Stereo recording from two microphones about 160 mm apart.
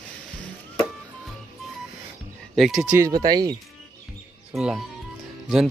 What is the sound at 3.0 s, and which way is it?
Speech, 25° right (ahead or behind).